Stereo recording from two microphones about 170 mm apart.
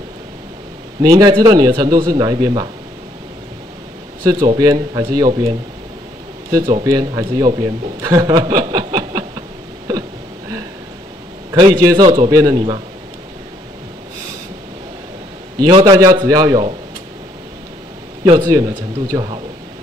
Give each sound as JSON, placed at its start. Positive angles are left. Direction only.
{"t": 1.0, "sound": "a man's voice", "side_deg": -25}
{"t": 4.2, "sound": "a man's voice", "side_deg": -25}
{"t": 6.5, "sound": "a man's voice", "side_deg": -25}
{"t": 9.9, "sound": "hiccup", "side_deg": -20}
{"t": 11.5, "sound": "a man's voice", "side_deg": -25}
{"t": 15.6, "sound": "a man's voice", "side_deg": -25}
{"t": 18.3, "sound": "a man's voice", "side_deg": -20}